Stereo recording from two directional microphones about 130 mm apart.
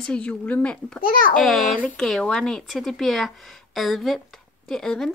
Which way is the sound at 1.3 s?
Centre (ahead or behind).